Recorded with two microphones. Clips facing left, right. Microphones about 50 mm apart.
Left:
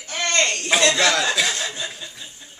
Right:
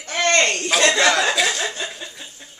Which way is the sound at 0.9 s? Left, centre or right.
Centre.